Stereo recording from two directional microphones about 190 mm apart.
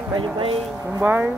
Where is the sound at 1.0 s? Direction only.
10° right (ahead or behind).